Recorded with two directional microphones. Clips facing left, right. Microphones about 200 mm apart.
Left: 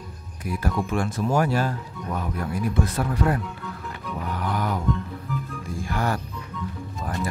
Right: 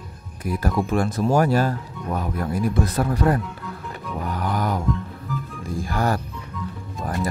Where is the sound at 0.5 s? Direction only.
40° right (ahead or behind).